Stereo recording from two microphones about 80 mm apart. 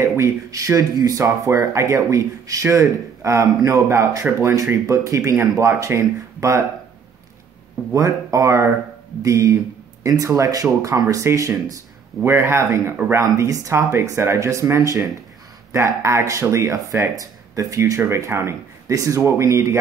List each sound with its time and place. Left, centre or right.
0.0 s speech: right
7.9 s speech: right
12.2 s speech: right